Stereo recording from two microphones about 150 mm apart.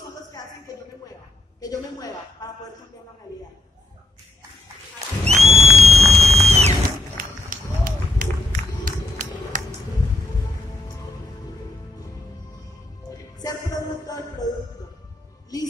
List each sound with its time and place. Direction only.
1.6 s a woman's voice: 25° left (ahead or behind)
5.2 s a sound: 45° right (ahead or behind)
7.2 s run: 65° right (ahead or behind)
9.5 s a sound: 60° right (ahead or behind)
13.1 s music: 25° left (ahead or behind)
15.5 s music: 25° left (ahead or behind)